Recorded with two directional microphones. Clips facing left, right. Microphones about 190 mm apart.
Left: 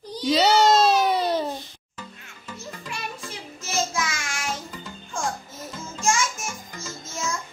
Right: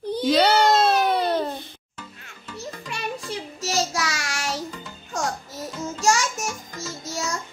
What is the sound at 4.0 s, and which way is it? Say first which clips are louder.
Child singing: right 1 dB; 80° right.